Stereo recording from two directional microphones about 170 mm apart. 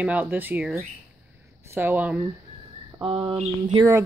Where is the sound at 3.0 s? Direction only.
30° right (ahead or behind).